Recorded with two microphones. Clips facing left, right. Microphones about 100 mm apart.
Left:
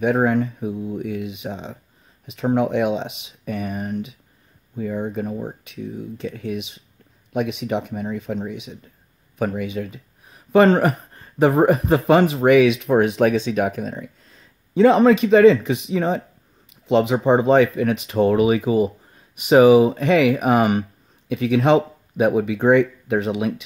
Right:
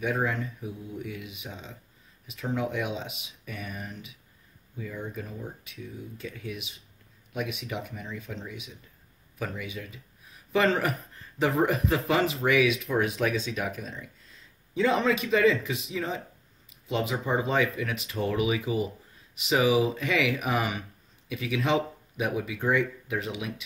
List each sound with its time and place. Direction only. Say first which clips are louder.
0.0 s speech: left 11 dB; 55° left (ahead or behind)